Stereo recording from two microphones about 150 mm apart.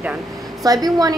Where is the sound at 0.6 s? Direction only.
25° right (ahead or behind).